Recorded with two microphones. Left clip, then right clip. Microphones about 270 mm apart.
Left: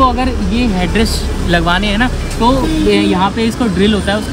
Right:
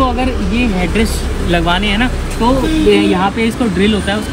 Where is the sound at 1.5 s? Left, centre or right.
Centre.